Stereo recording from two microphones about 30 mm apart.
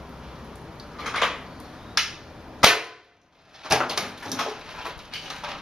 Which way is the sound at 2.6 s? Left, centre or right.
Centre.